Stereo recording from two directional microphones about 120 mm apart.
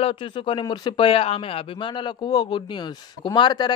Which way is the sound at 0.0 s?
45° left (ahead or behind).